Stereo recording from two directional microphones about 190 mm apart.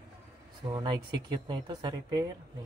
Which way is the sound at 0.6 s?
20° right (ahead or behind).